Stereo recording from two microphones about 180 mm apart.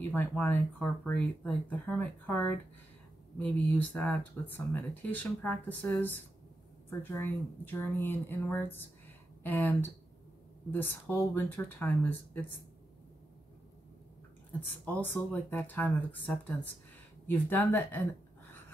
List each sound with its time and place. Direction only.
0.1 s speech: 10° left (ahead or behind)
14.6 s speech: 10° left (ahead or behind)